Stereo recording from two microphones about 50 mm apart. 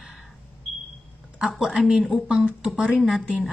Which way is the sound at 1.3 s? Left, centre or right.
Centre.